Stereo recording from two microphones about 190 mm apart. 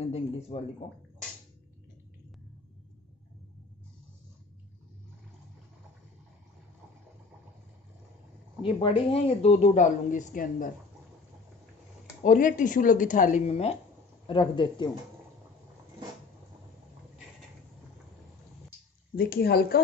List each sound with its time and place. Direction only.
0.0 s speech: 30° left (ahead or behind)
8.6 s speech: 25° left (ahead or behind); by 10.7 s 45° left (ahead or behind)
12.2 s speech: 45° left (ahead or behind); by 14.9 s 25° left (ahead or behind)
19.1 s speech: 50° left (ahead or behind)